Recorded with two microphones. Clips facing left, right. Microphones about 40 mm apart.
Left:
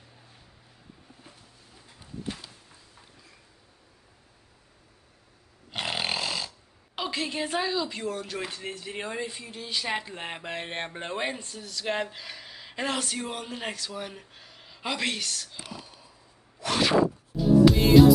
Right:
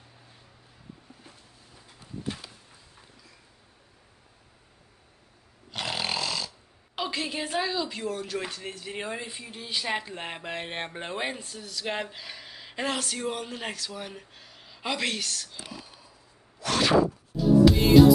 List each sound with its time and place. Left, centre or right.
5.7 s snoring: centre
7.0 s speech: centre
15.7 s a sound: centre
16.5 s music: centre